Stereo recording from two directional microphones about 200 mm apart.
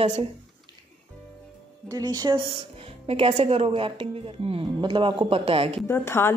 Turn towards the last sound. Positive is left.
turn(degrees=10)  # may be behind; listen again after turning